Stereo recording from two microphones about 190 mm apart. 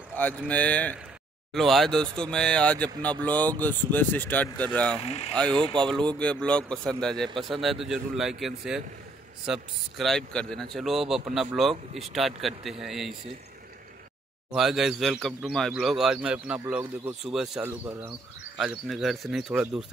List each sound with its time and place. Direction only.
0.1 s speech: 10° left (ahead or behind)
5.0 s speech: 35° left (ahead or behind)
5.3 s speech: 5° left (ahead or behind)
11.7 s speech: 35° right (ahead or behind)
12.1 s speech: centre (ahead or behind)
14.5 s speech: centre (ahead or behind)
18.6 s speech: centre (ahead or behind)